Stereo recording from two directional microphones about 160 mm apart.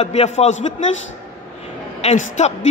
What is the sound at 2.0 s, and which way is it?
Speech, 45° left (ahead or behind).